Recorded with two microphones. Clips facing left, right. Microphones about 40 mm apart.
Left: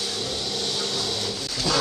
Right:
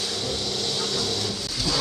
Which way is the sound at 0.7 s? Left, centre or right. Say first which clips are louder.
Right 1 dB; centre.